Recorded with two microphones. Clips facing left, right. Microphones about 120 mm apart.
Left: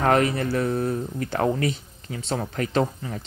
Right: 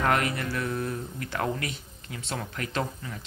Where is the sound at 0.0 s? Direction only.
35° left (ahead or behind).